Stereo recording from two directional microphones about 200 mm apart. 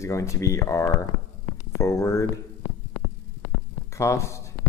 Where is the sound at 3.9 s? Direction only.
15° left (ahead or behind).